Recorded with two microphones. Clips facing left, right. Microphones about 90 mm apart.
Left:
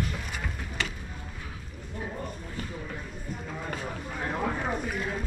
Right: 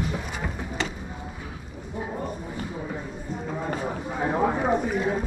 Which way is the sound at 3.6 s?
25° right (ahead or behind).